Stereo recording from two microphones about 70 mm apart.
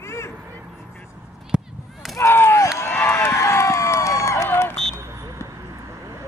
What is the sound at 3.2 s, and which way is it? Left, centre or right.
Run, left.